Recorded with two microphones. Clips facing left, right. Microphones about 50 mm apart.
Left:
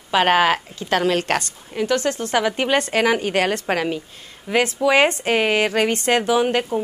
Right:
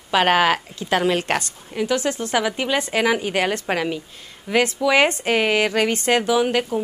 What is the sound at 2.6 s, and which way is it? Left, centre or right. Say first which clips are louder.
Speech: left 3 dB; left.